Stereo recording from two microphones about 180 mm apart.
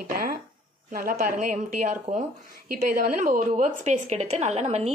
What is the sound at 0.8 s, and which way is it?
A woman's voice, 50° right (ahead or behind).